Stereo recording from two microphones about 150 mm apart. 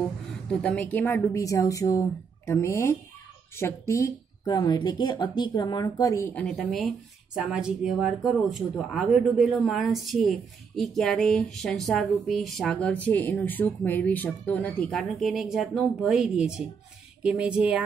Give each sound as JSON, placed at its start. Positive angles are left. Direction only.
{"t": 0.5, "sound": "a woman's voice", "side_deg": 5}
{"t": 6.5, "sound": "a woman's voice", "side_deg": 0}